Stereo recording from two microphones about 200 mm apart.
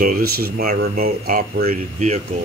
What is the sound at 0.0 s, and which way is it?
Speech, 45° right (ahead or behind).